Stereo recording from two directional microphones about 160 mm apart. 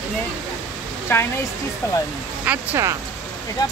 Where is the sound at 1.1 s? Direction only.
15° left (ahead or behind).